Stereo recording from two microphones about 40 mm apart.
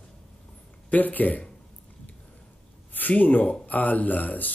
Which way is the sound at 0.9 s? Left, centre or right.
Left.